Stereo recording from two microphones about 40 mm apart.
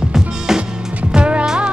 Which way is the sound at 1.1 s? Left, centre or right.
Right.